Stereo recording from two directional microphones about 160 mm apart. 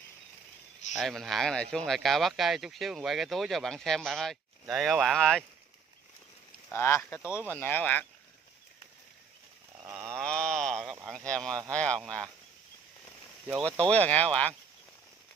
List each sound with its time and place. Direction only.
0.9 s speech: centre (ahead or behind)
6.7 s speech: 15° left (ahead or behind)
9.8 s livestock: 15° right (ahead or behind)
10.1 s livestock: 5° left (ahead or behind)
11.1 s speech: 5° left (ahead or behind)
13.8 s speech: 10° left (ahead or behind)